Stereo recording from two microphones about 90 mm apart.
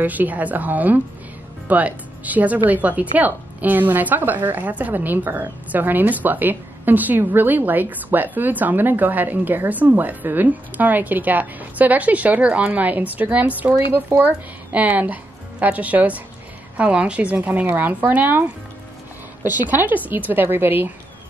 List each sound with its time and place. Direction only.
0.0 s speech: 20° right (ahead or behind)